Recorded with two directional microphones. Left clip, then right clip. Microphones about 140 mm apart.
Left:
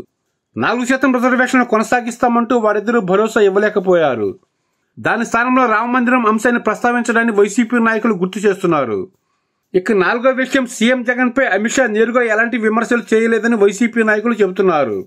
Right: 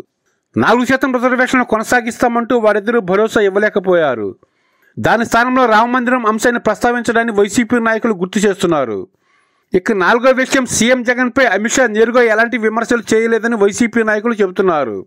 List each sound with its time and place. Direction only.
0.6 s speech: 50° right (ahead or behind)
9.7 s speech: 55° right (ahead or behind)